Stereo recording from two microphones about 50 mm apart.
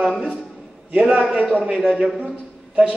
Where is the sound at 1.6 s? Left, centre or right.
Centre.